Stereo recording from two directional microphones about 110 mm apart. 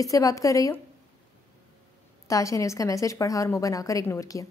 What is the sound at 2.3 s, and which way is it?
A woman's voice, 30° left (ahead or behind).